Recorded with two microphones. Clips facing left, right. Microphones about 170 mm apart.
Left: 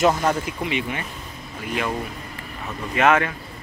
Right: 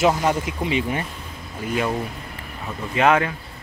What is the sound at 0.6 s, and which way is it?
Speech, 35° right (ahead or behind).